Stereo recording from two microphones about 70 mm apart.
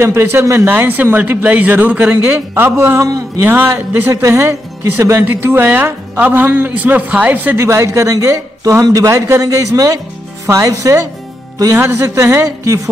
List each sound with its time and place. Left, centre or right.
0.0 s speech: right
0.7 s speech: right
4.1 s speech: right
7.5 s speech: right
11.7 s speech: right
12.4 s speech: right